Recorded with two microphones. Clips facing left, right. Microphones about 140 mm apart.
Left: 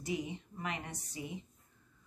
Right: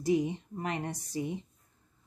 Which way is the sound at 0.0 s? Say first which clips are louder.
Right 10 dB; 35° right (ahead or behind).